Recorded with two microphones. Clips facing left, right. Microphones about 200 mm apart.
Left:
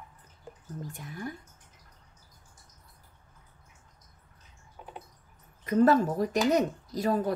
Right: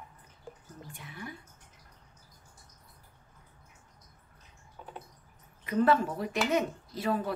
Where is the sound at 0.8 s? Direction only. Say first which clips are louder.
Left 5 dB; 45° left (ahead or behind).